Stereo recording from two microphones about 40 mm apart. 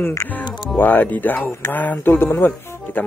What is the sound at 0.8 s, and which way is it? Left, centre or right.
Speech, left.